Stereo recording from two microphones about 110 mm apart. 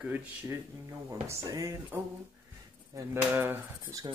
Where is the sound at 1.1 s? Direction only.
30° right (ahead or behind).